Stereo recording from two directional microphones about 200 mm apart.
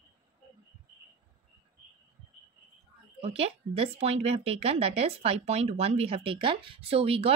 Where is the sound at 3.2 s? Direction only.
30° right (ahead or behind).